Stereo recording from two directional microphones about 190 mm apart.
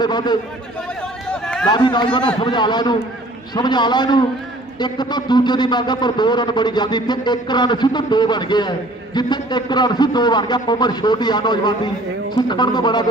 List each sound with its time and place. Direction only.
0.0 s a man's voice: 20° left (ahead or behind)
1.3 s a sound: 5° left (ahead or behind)
1.7 s a man's voice: 25° left (ahead or behind)